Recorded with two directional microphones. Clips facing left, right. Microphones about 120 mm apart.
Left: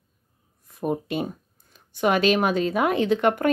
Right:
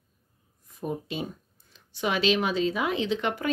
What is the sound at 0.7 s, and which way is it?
Speech, 60° left (ahead or behind).